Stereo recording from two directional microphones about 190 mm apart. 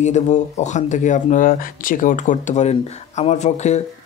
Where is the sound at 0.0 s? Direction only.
40° left (ahead or behind).